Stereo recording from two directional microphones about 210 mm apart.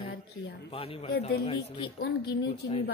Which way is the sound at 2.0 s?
55° left (ahead or behind).